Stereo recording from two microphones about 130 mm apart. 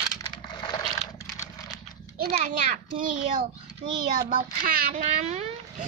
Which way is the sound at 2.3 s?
85° right.